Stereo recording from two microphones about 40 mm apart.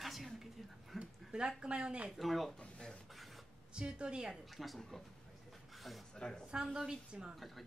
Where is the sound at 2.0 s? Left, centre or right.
Centre.